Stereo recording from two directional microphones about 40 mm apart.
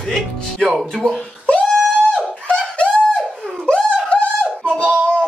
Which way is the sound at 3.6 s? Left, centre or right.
Left.